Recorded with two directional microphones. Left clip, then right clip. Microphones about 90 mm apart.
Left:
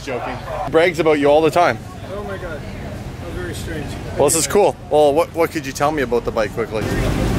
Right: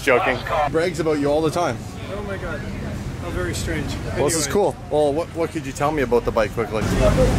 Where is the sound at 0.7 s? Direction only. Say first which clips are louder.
Left 6 dB; 20° left (ahead or behind).